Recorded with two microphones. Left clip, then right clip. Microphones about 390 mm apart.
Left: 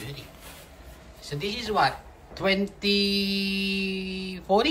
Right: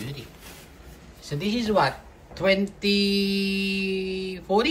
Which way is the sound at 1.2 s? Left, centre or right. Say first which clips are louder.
Right 3 dB; centre.